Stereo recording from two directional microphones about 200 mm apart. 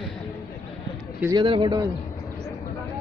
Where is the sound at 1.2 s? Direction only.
20° right (ahead or behind).